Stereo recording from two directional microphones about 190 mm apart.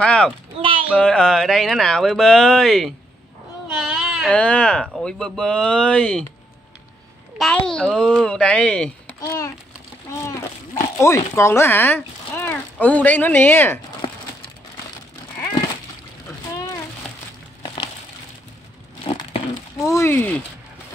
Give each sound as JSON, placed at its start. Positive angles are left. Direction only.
{"t": 0.0, "sound": "speech", "side_deg": 5}
{"t": 0.6, "sound": "a sound", "side_deg": -30}
{"t": 0.9, "sound": "speech", "side_deg": 5}
{"t": 7.3, "sound": "speech", "side_deg": 5}
{"t": 19.9, "sound": "speech", "side_deg": 15}